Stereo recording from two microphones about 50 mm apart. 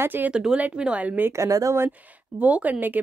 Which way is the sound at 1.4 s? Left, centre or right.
Right.